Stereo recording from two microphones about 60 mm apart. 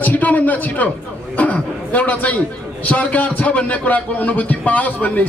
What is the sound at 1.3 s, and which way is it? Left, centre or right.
A man's voice, left.